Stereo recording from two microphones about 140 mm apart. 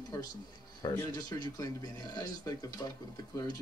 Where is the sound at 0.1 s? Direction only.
25° left (ahead or behind).